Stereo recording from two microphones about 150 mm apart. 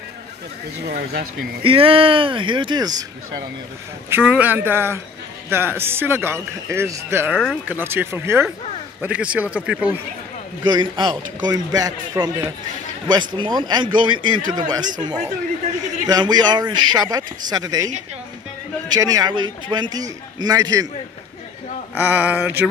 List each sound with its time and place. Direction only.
0.8 s speech: 90° right
1.6 s speech: 35° right (ahead or behind)
4.1 s speech: 10° right (ahead or behind)
10.6 s a man's voice: 30° right (ahead or behind)
16.1 s a man's voice: 30° right (ahead or behind)
18.9 s a man's voice: 25° right (ahead or behind)
21.9 s speech: 10° right (ahead or behind)